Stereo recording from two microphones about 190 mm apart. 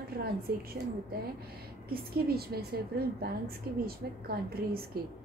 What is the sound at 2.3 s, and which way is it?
A woman's voice, 55° right (ahead or behind).